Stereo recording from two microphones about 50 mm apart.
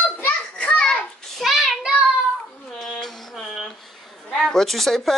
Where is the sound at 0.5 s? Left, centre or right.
Centre.